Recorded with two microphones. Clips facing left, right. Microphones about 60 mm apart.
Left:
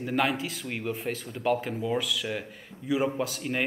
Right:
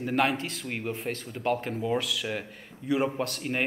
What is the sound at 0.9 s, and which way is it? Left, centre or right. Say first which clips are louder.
A man's voice: left 1 dB; centre.